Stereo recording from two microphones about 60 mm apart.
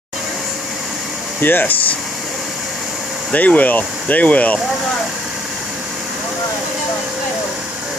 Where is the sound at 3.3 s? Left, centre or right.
Left.